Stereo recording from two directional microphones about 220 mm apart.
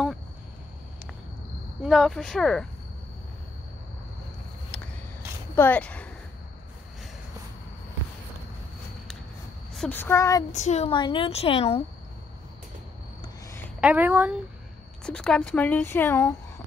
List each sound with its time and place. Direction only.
1.8 s speech: centre (ahead or behind)
5.6 s speech: 5° left (ahead or behind)
9.8 s speech: 10° left (ahead or behind)
10.5 s a woman's voice: 30° left (ahead or behind)
13.2 s a sound: 15° left (ahead or behind)
13.7 s speech: 5° right (ahead or behind)
15.0 s speech: 5° left (ahead or behind)